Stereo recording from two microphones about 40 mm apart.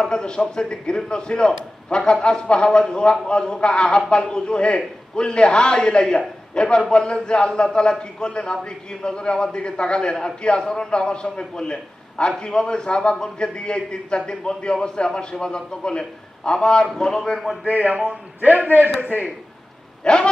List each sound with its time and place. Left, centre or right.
0.0 s a man's voice: left
18.7 s a man's voice: left
20.0 s a sound: left